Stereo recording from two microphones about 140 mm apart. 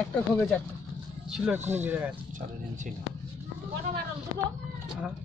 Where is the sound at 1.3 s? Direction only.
5° right (ahead or behind).